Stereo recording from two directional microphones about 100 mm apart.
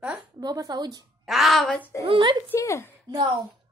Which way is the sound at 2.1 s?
55° right (ahead or behind).